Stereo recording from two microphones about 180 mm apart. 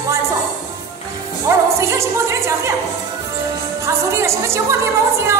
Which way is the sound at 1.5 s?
15° right (ahead or behind).